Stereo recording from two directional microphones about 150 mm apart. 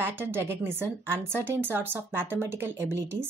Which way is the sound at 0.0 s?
15° right (ahead or behind).